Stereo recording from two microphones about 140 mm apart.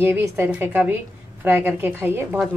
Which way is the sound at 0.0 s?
15° right (ahead or behind).